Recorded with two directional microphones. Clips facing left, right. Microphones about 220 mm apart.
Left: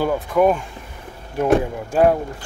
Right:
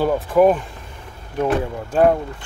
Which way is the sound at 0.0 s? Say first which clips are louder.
Right 2 dB; centre (ahead or behind).